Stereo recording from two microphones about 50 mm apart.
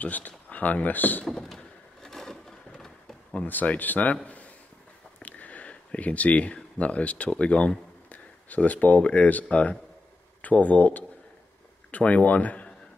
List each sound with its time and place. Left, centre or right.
0.0 s speech: left
1.2 s vehicle: centre
2.0 s a sound: centre
3.4 s speech: left
5.2 s sniff: left
5.9 s speech: left